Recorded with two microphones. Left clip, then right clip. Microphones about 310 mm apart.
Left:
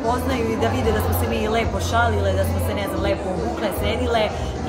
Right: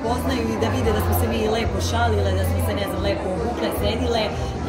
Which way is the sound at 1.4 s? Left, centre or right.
Centre.